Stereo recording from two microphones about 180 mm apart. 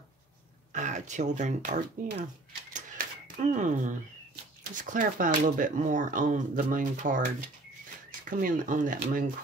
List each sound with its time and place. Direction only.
0.7 s speech: 45° right (ahead or behind)
2.7 s typewriter: 45° right (ahead or behind)
4.8 s speech: 45° right (ahead or behind)